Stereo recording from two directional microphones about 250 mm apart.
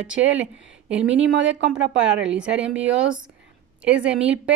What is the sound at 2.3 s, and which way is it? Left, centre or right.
Speech, centre.